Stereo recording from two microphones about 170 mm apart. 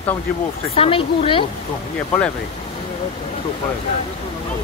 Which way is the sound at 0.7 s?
35° left (ahead or behind).